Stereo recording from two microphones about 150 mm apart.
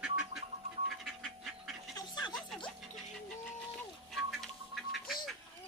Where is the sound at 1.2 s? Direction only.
Centre (ahead or behind).